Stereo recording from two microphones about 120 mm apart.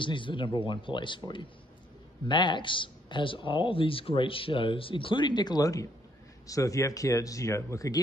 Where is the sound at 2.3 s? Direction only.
40° left (ahead or behind).